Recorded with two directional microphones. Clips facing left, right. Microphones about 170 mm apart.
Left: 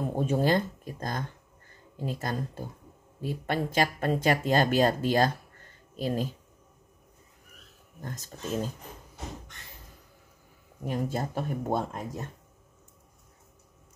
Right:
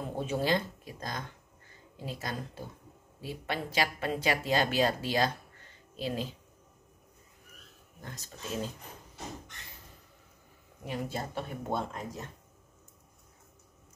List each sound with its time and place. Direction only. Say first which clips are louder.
0.1 s speech: left 4 dB; 45° left (ahead or behind)
8.0 s speech: left 5 dB; 45° left (ahead or behind)
10.8 s speech: left 5 dB; 45° left (ahead or behind)